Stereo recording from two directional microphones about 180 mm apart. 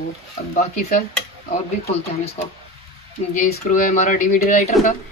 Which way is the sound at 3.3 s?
45° left (ahead or behind).